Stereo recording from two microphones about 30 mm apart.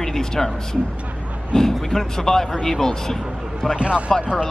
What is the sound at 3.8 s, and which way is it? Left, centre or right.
Speech, right.